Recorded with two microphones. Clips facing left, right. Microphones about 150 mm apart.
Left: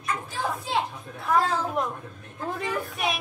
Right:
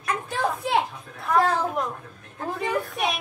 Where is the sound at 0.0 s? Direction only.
65° right (ahead or behind).